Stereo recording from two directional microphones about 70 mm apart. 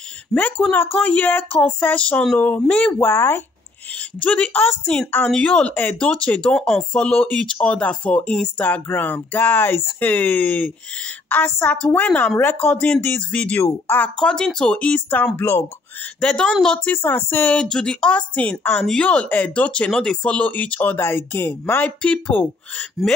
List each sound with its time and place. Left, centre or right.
0.3 s speech: left
3.0 s speech: left
4.2 s speech: left
6.5 s speech: centre
6.9 s speech: centre
13.6 s speech: left
14.0 s speech: centre
16.2 s speech: centre
16.9 s speech: left
17.6 s speech: centre; by 21.8 s left
21.8 s speech: centre